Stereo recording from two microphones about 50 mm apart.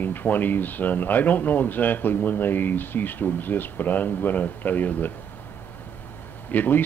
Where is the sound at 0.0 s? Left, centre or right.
Left.